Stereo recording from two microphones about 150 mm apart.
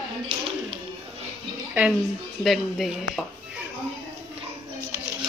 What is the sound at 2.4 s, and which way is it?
Speech, centre (ahead or behind).